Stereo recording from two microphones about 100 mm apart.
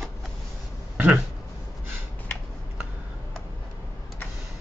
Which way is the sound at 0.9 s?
15° right (ahead or behind).